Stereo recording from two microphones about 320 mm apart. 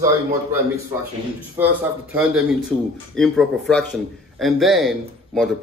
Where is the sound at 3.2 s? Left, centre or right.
Centre.